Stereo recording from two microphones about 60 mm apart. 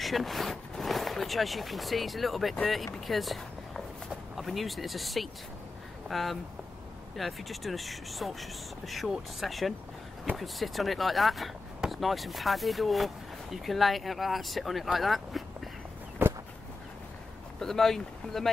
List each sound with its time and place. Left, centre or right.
0.0 s speech: centre
16.2 s a sound: right
17.6 s speech: centre